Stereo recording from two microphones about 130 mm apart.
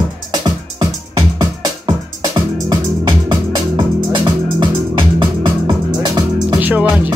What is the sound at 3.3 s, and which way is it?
Music, 40° right (ahead or behind).